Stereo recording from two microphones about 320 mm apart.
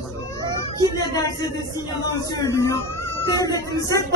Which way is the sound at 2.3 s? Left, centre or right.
Centre.